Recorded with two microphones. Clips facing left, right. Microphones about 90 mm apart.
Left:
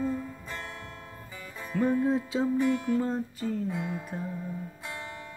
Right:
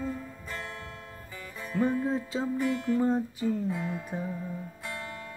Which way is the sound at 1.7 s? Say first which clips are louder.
Left 2 dB; 5° right (ahead or behind).